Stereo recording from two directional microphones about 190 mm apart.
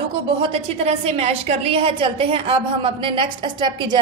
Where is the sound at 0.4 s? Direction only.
30° right (ahead or behind).